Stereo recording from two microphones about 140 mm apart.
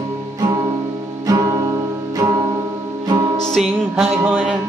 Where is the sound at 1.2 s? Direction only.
25° right (ahead or behind).